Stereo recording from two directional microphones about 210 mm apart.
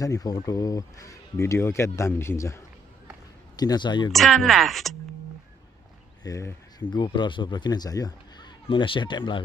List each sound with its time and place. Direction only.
0.0 s speech: 15° left (ahead or behind)
4.1 s speech: centre (ahead or behind)
6.2 s speech: 15° left (ahead or behind)